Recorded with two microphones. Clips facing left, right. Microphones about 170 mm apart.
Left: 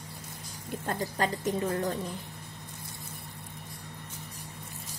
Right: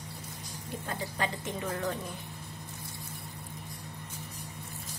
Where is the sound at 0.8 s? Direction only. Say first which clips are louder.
Left 5 dB; 40° left (ahead or behind).